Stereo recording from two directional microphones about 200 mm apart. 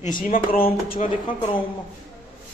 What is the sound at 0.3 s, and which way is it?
Speech, 45° left (ahead or behind).